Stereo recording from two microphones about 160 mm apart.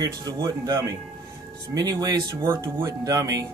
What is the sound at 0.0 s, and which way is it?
Speech, 25° right (ahead or behind).